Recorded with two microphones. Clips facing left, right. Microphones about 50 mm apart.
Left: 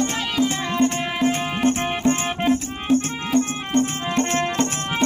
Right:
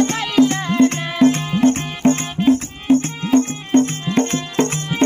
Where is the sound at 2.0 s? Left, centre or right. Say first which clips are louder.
Right 6 dB; right.